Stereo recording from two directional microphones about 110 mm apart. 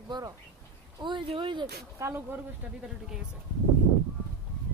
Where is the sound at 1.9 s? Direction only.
25° right (ahead or behind).